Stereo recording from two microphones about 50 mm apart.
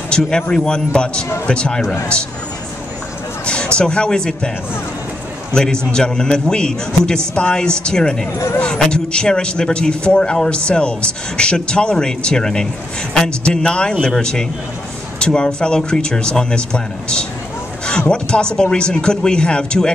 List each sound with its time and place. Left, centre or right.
0.1 s speech: centre
3.4 s speech: centre
5.5 s speech: centre